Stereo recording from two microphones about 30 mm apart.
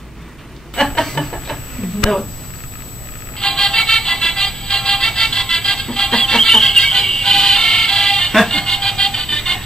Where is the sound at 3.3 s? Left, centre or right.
Centre.